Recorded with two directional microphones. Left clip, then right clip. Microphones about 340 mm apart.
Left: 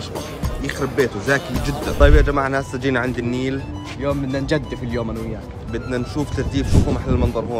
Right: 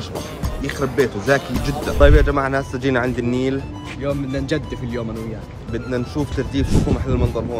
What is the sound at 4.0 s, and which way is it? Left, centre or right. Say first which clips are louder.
Speech: left 1 dB; centre.